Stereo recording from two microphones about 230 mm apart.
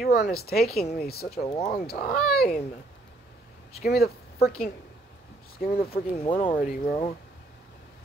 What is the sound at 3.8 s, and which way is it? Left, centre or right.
Speech, left.